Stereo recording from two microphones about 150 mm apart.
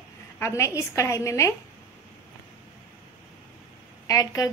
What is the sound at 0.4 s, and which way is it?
Speech, 20° left (ahead or behind).